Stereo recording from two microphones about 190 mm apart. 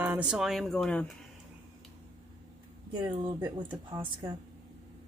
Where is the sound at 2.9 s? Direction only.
20° right (ahead or behind).